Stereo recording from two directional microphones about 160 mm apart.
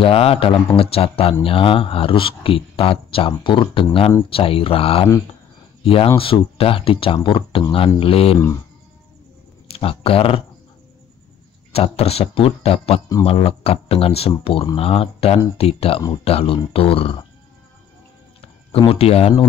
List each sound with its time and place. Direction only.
0.0 s speech: 40° left (ahead or behind)
9.7 s speech: 35° left (ahead or behind)
11.7 s speech: 40° left (ahead or behind)
18.4 s speech: 35° left (ahead or behind)